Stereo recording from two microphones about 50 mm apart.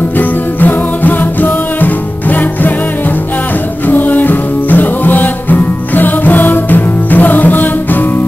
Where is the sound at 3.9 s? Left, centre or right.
Left.